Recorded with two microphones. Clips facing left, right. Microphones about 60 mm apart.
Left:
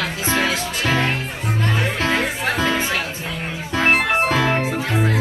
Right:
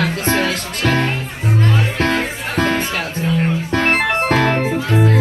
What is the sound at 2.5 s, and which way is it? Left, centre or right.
Music, right.